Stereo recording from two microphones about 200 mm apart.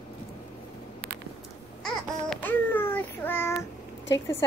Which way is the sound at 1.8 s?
5° left (ahead or behind).